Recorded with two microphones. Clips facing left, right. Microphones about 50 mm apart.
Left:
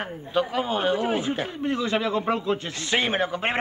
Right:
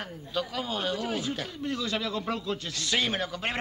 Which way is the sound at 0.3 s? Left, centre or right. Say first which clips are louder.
Left 7 dB; left.